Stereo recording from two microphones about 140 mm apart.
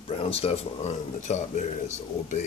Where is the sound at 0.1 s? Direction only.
45° left (ahead or behind).